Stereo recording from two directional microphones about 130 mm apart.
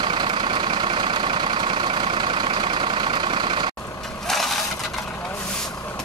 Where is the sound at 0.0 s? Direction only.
35° right (ahead or behind).